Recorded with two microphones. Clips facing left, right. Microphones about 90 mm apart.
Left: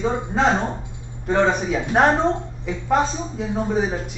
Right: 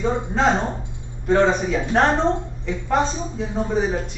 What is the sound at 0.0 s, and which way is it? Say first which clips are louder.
A man's voice: even; 5° left (ahead or behind).